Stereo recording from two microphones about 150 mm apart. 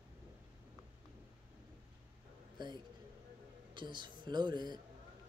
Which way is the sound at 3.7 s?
30° right (ahead or behind).